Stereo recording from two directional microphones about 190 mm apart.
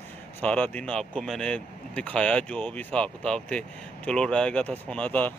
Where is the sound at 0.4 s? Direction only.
5° left (ahead or behind).